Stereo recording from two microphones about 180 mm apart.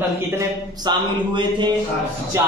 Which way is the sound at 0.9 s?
25° right (ahead or behind).